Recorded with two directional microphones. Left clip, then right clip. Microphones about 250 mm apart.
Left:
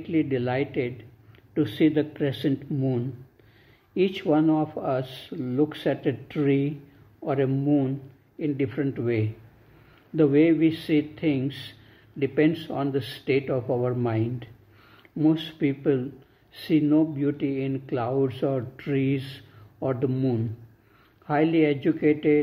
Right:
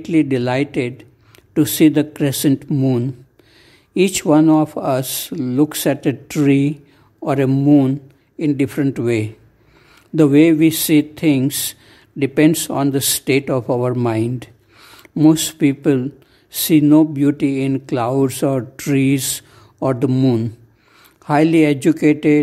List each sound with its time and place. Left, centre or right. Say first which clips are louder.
0.0 s speech: right 9 dB; right